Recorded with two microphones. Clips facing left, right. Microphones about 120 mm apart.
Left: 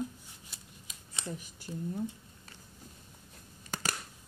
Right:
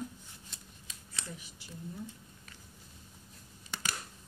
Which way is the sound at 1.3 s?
45° left (ahead or behind).